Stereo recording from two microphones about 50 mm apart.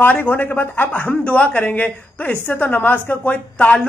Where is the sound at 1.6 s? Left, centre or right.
Left.